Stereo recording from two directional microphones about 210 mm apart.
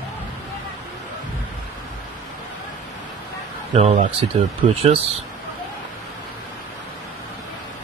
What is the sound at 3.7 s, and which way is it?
Speech, 30° right (ahead or behind).